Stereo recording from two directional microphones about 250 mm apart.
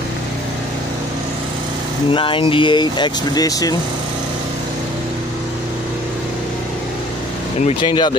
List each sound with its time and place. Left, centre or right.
2.0 s speech: centre
7.6 s speech: centre